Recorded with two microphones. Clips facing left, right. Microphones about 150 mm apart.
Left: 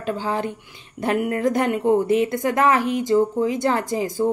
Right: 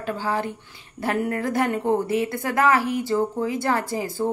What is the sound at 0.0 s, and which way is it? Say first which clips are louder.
A woman's voice: left 2 dB; 20° left (ahead or behind).